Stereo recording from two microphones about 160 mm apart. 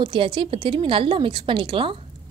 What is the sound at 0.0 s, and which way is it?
Speech, 30° right (ahead or behind).